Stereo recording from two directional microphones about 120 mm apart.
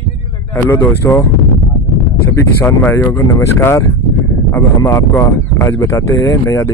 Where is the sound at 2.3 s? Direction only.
20° left (ahead or behind).